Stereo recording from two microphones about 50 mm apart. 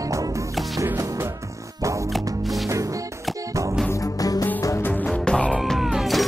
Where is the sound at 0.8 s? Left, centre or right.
Right.